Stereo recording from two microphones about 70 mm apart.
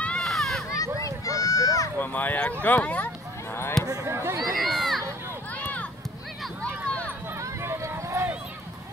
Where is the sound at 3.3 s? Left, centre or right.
Left.